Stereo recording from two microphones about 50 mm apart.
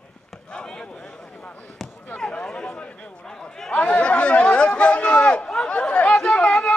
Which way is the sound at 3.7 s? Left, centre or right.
Left.